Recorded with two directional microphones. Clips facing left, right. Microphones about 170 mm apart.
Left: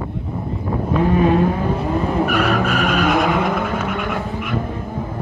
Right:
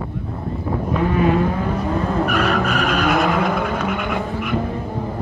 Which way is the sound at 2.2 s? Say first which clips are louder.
Left 1 dB; centre (ahead or behind).